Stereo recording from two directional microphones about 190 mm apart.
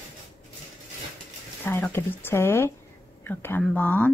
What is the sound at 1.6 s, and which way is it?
A woman's voice, 10° left (ahead or behind).